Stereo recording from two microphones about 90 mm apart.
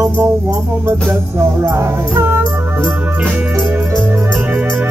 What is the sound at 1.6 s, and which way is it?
Speech, 45° right (ahead or behind).